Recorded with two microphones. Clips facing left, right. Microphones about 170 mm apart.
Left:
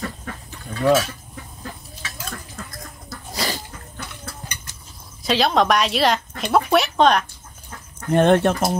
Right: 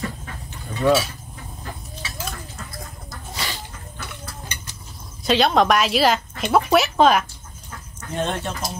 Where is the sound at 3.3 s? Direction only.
40° left (ahead or behind).